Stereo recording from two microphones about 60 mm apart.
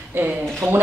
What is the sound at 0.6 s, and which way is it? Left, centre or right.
Speech, right.